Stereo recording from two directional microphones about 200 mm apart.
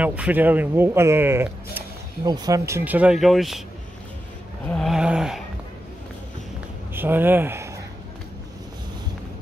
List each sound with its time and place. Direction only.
0.0 s speech: 5° right (ahead or behind)
4.6 s a sound: centre (ahead or behind)
6.9 s speech: 10° right (ahead or behind)